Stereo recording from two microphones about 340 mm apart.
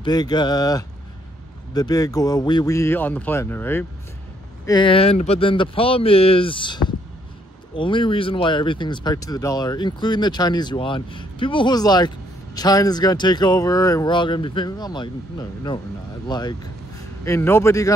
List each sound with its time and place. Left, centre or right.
0.0 s speech: centre